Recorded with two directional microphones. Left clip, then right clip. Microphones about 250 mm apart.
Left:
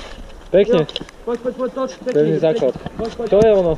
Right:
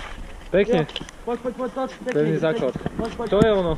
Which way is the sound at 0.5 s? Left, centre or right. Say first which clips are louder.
Left 6 dB; centre.